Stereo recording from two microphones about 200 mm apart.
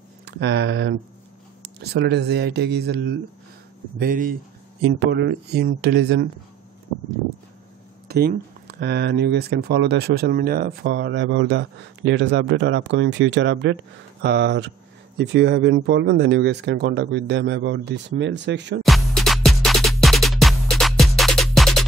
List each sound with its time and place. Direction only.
0.2 s speech: 60° right (ahead or behind)
4.0 s speech: 45° right (ahead or behind)
4.8 s speech: 60° right (ahead or behind)
8.1 s speech: 50° right (ahead or behind)
18.8 s music: centre (ahead or behind)